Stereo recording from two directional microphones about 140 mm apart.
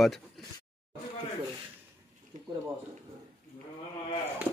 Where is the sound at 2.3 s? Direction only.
60° right (ahead or behind).